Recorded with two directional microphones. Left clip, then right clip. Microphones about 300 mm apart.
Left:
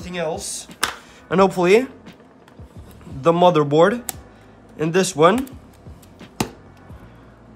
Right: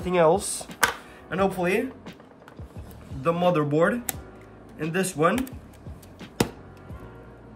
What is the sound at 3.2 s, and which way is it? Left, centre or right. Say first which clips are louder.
Speech: left 8 dB; centre.